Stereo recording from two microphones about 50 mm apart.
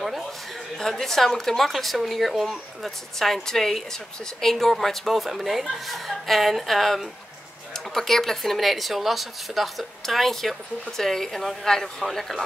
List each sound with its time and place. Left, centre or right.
0.7 s a woman's voice: centre